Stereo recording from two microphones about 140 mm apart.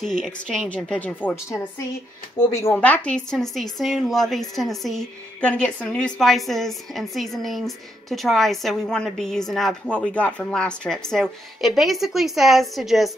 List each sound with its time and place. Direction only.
0.2 s a woman's voice: 5° left (ahead or behind)